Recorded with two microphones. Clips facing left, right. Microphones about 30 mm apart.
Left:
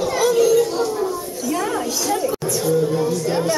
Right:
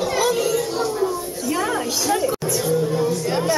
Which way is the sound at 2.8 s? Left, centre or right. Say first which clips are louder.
Left 1 dB; centre.